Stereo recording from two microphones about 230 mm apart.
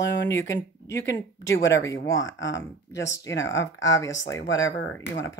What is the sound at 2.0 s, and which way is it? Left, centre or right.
Speech, left.